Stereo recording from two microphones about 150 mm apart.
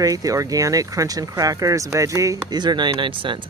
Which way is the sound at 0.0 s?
25° right (ahead or behind).